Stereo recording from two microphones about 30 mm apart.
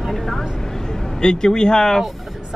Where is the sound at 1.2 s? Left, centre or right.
Left.